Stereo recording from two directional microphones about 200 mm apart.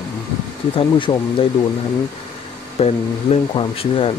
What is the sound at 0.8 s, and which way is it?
Speech, 25° left (ahead or behind).